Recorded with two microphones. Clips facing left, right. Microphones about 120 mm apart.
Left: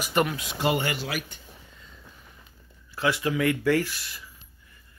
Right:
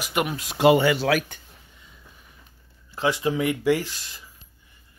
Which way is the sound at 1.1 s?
90° right.